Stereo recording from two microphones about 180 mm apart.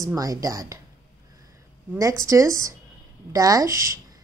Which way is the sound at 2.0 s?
15° right (ahead or behind).